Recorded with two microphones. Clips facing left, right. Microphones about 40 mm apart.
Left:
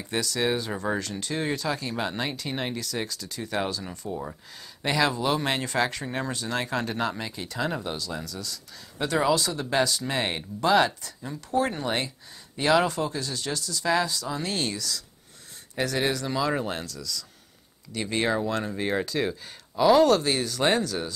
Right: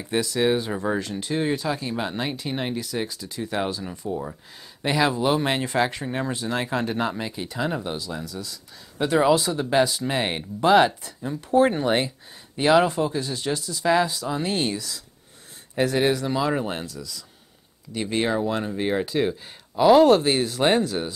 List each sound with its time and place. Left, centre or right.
0.0 s speech: centre
20.1 s speech: right